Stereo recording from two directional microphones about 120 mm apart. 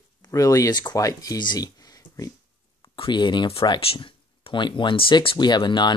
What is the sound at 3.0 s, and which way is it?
Speech, 40° left (ahead or behind).